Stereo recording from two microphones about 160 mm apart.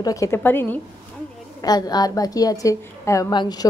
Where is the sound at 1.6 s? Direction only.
25° left (ahead or behind).